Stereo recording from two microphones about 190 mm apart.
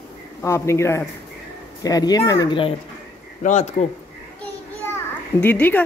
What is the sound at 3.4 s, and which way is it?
Speech, 40° left (ahead or behind).